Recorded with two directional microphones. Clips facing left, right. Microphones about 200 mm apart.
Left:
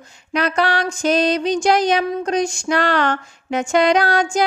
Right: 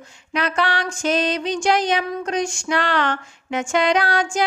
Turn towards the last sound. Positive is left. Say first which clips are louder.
# left 3 dB
turn(degrees=40)  # may be behind; listen again after turning